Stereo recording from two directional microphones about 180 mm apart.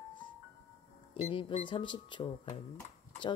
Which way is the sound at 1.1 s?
30° left (ahead or behind).